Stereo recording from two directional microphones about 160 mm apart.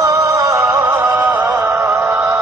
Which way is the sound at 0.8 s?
10° right (ahead or behind).